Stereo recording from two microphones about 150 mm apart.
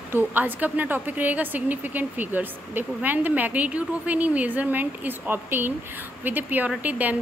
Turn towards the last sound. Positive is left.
turn(degrees=-10)  # may be behind; listen again after turning